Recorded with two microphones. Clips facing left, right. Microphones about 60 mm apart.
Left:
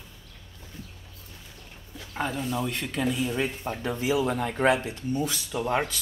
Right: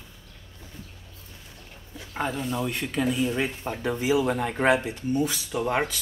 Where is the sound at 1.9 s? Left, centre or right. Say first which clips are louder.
Right 1 dB; centre.